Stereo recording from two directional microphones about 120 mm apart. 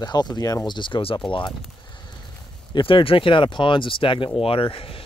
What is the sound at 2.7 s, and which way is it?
Speech, 45° left (ahead or behind).